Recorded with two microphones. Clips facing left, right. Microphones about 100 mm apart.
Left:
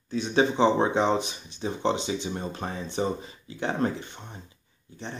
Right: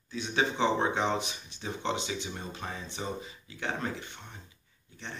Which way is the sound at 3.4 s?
30° left (ahead or behind).